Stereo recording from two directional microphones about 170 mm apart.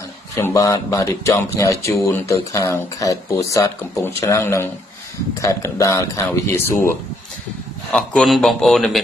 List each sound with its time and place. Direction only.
0.4 s speech: 15° left (ahead or behind)
7.9 s a man's voice: 5° left (ahead or behind)